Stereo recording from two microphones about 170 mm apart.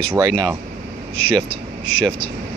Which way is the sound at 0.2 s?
20° right (ahead or behind).